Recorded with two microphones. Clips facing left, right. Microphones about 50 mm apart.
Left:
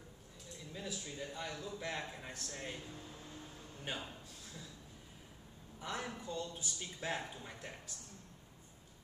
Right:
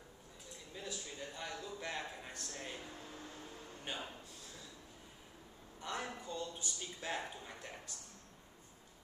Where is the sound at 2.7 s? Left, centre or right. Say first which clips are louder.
Even; right.